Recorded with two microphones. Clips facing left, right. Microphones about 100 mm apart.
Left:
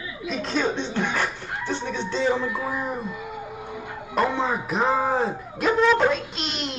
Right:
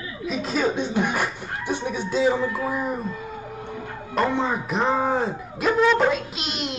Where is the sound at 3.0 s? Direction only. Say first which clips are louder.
Right 1 dB; 15° left (ahead or behind).